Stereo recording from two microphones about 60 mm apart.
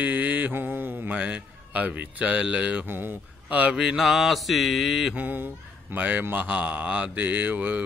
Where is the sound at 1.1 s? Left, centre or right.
Right.